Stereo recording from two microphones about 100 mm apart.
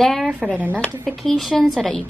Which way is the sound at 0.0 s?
5° left (ahead or behind).